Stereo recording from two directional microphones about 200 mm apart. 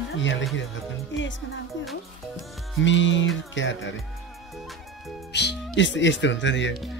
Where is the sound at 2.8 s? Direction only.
65° left (ahead or behind).